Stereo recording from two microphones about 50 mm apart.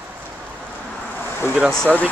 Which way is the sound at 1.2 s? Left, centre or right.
Left.